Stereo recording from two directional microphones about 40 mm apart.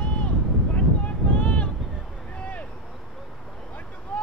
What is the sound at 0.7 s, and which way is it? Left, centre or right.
Wind noise, left.